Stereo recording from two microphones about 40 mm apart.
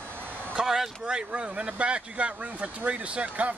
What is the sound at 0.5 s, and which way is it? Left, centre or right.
Speech, centre.